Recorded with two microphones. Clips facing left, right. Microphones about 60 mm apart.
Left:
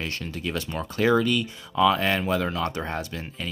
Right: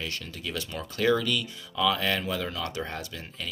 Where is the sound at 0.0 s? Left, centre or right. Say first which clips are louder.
Left 5 dB; left.